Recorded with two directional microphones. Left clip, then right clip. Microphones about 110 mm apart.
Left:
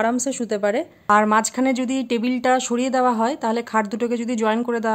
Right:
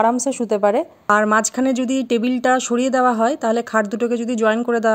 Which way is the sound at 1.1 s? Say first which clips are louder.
Even; 35° right (ahead or behind).